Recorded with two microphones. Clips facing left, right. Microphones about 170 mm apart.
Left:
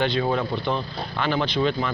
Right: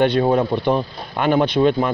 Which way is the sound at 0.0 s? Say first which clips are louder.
Right 7 dB; 45° right (ahead or behind).